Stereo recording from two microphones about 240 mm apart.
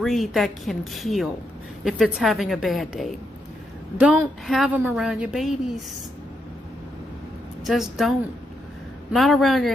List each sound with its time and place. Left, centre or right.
0.0 s a woman's voice: centre
7.6 s a woman's voice: centre